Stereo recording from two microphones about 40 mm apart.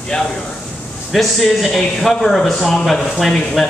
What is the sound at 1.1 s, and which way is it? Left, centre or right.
Speech, centre.